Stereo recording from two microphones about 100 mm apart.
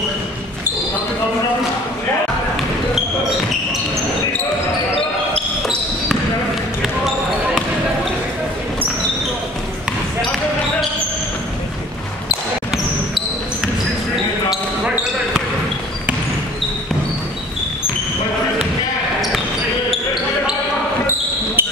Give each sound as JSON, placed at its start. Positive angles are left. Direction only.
{"t": 21.6, "sound": "basketball bounce", "side_deg": -20}